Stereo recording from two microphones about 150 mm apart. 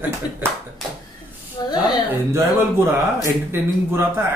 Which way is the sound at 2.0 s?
15° right (ahead or behind).